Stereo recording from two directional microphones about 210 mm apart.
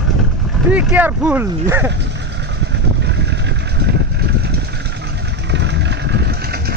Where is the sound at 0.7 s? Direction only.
5° right (ahead or behind).